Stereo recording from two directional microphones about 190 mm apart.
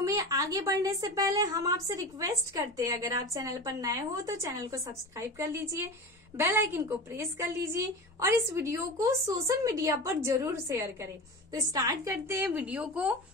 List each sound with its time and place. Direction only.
0.0 s a woman's voice: 20° right (ahead or behind)